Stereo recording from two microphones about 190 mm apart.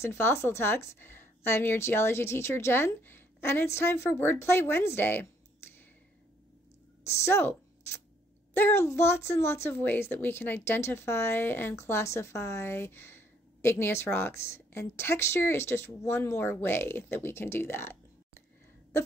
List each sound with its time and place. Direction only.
0.0 s speech: 15° left (ahead or behind)
7.2 s speech: 10° left (ahead or behind)